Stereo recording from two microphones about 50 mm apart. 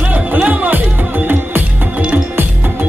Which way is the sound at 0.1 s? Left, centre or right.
Right.